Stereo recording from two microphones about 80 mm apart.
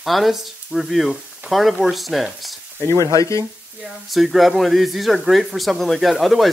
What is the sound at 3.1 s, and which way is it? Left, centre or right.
Speech, left.